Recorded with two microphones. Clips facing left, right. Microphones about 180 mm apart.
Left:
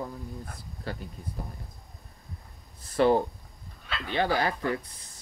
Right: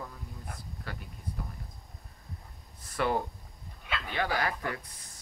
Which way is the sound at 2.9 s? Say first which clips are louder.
Left 8 dB; 30° left (ahead or behind).